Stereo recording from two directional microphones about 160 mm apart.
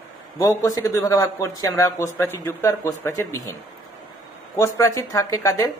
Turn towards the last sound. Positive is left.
turn(degrees=20)  # may be behind; listen again after turning